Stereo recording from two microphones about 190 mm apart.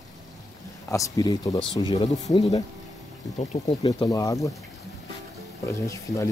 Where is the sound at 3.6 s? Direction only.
20° left (ahead or behind).